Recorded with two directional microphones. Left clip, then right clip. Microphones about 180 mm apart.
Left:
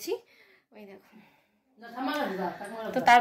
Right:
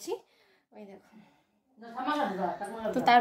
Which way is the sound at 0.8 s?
20° left (ahead or behind).